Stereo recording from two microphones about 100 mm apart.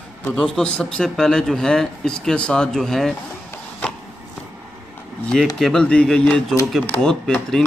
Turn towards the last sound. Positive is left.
turn(degrees=5)  # may be behind; listen again after turning